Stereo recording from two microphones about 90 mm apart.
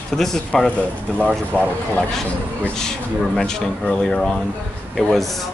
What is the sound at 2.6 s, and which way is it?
Speech, 5° left (ahead or behind).